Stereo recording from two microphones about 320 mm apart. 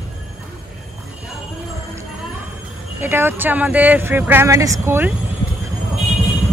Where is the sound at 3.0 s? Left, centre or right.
Centre.